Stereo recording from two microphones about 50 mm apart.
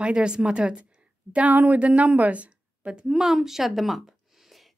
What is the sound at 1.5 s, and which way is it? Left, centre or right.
A woman's voice, right.